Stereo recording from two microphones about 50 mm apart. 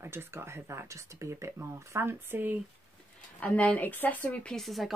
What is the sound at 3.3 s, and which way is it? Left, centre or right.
Speech, left.